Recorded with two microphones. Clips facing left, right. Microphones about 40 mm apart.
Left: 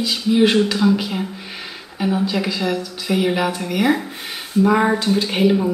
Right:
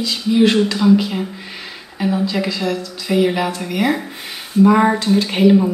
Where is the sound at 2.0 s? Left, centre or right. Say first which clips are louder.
Right 1 dB; centre.